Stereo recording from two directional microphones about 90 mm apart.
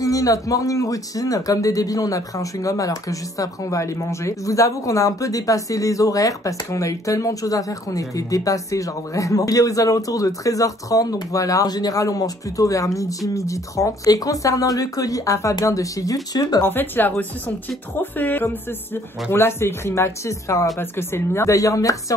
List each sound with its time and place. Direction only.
0.0 s speech: 40° left (ahead or behind)
16.6 s speech: 20° left (ahead or behind); by 21.9 s 35° left (ahead or behind)